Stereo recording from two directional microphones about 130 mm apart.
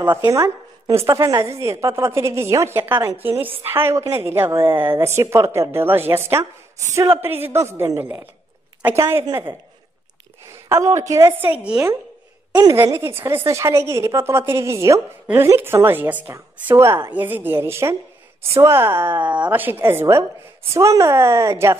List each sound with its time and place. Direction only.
0.0 s a woman's voice: 15° right (ahead or behind)
0.3 s a woman's voice: 25° right (ahead or behind)
10.5 s a woman's voice: 25° right (ahead or behind)
12.5 s a woman's voice: 25° right (ahead or behind)